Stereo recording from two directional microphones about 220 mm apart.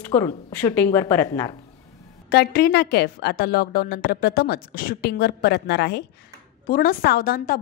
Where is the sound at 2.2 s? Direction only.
45° left (ahead or behind).